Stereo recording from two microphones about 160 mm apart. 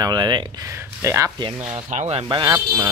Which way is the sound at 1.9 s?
45° right (ahead or behind).